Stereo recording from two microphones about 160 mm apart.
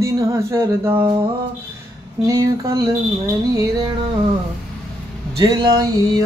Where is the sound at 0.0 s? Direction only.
20° right (ahead or behind).